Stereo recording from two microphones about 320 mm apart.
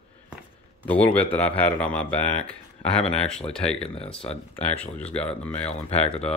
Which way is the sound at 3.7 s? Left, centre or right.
Centre.